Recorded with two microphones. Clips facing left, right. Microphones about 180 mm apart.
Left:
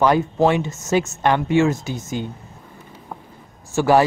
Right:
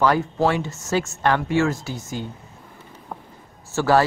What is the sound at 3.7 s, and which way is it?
Speech, 15° left (ahead or behind).